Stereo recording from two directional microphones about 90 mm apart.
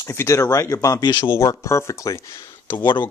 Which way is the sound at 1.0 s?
55° left (ahead or behind).